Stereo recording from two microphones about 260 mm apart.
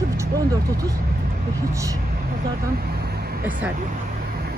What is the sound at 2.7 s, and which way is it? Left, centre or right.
Vehicle, right.